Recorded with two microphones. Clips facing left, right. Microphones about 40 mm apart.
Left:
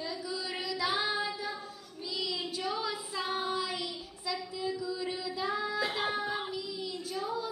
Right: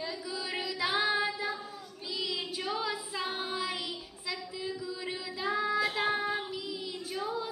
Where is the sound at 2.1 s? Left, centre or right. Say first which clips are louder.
Even; centre.